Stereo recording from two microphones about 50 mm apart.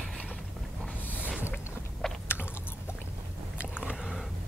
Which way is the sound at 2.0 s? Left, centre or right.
Centre.